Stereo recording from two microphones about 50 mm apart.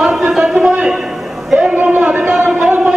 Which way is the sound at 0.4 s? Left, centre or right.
Centre.